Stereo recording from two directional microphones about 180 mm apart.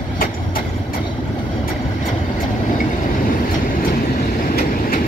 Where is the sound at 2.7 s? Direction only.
45° left (ahead or behind).